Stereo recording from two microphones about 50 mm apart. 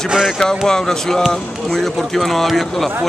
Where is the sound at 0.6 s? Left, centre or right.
Centre.